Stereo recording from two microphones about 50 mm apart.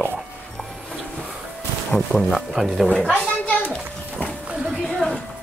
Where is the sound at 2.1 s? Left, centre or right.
Left.